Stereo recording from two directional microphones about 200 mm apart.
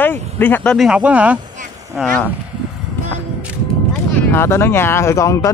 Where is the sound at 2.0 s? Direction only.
10° left (ahead or behind).